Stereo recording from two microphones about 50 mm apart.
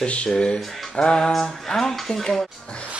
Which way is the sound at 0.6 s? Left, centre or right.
Centre.